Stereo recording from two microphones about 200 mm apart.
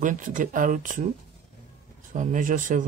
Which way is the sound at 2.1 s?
40° right (ahead or behind).